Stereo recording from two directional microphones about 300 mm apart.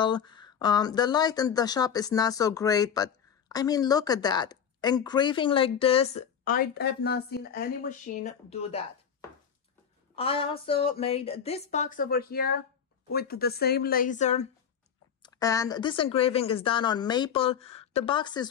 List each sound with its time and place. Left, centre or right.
0.0 s a woman's voice: centre
15.2 s speech: centre